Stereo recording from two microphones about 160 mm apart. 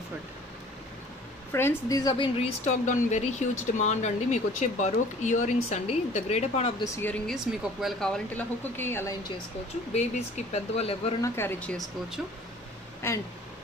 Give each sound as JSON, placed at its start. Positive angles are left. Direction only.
{"t": 1.5, "sound": "speech", "side_deg": 15}
{"t": 2.3, "sound": "speech", "side_deg": 45}
{"t": 6.8, "sound": "speech", "side_deg": 15}
{"t": 7.2, "sound": "speech", "side_deg": 0}
{"t": 9.9, "sound": "speech", "side_deg": 45}
{"t": 11.1, "sound": "speech", "side_deg": 15}